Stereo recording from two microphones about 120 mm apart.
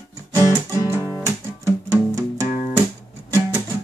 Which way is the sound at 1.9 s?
25° right (ahead or behind).